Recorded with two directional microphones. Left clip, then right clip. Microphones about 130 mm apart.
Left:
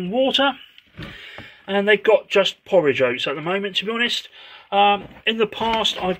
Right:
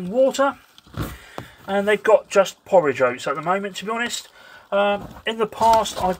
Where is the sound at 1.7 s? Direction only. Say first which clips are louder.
Left 1 dB; 30° left (ahead or behind).